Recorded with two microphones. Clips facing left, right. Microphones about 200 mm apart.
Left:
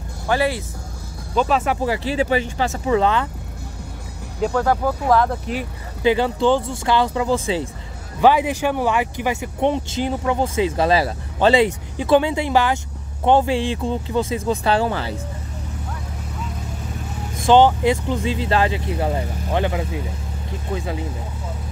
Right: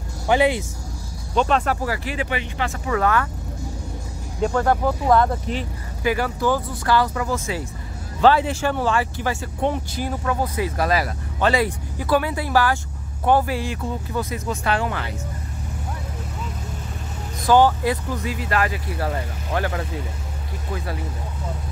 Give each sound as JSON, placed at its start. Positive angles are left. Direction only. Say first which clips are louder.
{"t": 0.3, "sound": "speech", "louder": "right 2 dB", "side_deg": -20}
{"t": 1.3, "sound": "speech", "louder": "left 1 dB", "side_deg": 5}
{"t": 1.8, "sound": "speech", "louder": "left 5 dB", "side_deg": 25}
{"t": 2.7, "sound": "speech", "louder": "left 3 dB", "side_deg": 25}
{"t": 4.5, "sound": "speech", "louder": "left 1 dB", "side_deg": -5}
{"t": 6.0, "sound": "speech", "louder": "left 4 dB", "side_deg": 25}
{"t": 8.2, "sound": "speech", "louder": "left 1 dB", "side_deg": 15}
{"t": 17.5, "sound": "speech", "louder": "left 3 dB", "side_deg": 20}